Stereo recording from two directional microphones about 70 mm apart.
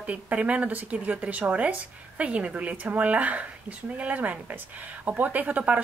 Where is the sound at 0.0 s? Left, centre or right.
Centre.